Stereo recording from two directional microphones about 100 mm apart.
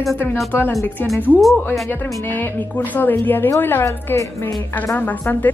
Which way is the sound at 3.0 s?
20° left (ahead or behind).